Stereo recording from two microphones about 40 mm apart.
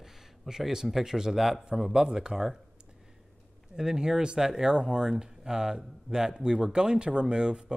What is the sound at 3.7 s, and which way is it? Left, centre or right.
Speech, centre.